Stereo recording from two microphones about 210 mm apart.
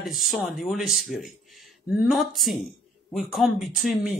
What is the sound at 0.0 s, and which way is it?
Speech, centre (ahead or behind).